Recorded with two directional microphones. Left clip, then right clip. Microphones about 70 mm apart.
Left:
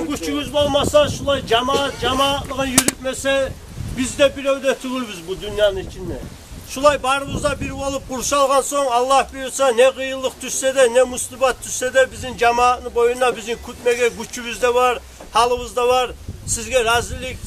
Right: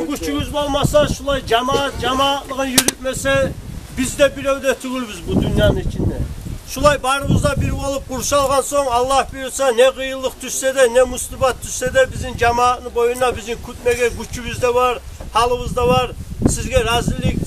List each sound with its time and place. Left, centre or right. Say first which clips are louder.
0.1 s a man's voice: even; centre; by 5.8 s right
6.7 s a man's voice: right 1 dB; centre